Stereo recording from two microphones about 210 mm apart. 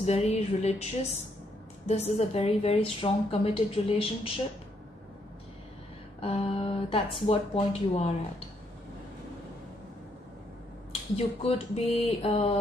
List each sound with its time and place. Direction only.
0.0 s a woman's voice: 30° left (ahead or behind)
6.2 s a woman's voice: 25° left (ahead or behind)
10.9 s a woman's voice: 30° left (ahead or behind)